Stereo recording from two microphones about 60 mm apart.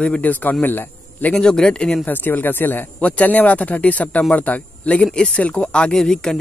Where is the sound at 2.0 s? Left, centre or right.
Left.